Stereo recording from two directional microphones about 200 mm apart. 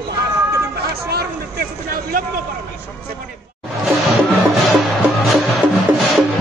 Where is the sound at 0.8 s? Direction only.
50° right (ahead or behind).